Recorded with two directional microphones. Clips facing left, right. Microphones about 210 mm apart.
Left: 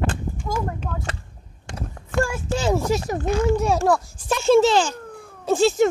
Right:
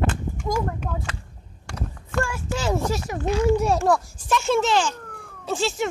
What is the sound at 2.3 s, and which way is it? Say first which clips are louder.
Speech: left 3 dB; 25° left (ahead or behind).